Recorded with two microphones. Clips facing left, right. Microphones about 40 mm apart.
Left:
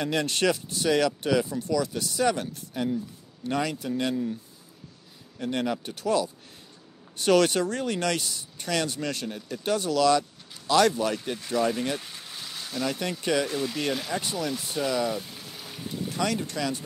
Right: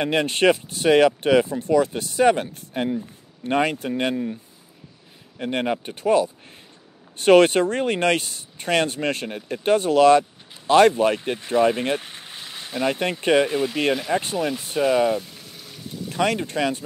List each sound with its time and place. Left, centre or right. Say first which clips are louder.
0.0 s speech: right 6 dB; right
5.4 s speech: right 4 dB; right
15.1 s a sound: right 5 dB; centre
16.1 s speech: right 7 dB; right